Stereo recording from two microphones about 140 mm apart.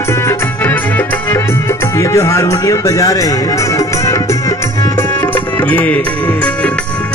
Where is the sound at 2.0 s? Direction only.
20° left (ahead or behind).